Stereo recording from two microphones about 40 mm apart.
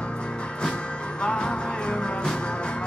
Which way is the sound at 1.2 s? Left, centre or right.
Left.